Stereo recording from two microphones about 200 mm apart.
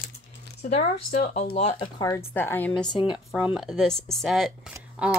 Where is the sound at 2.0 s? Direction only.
15° left (ahead or behind).